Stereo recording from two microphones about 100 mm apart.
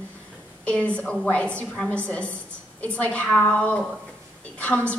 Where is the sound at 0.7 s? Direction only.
10° left (ahead or behind).